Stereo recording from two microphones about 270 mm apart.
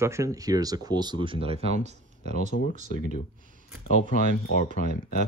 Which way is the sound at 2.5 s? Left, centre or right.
Left.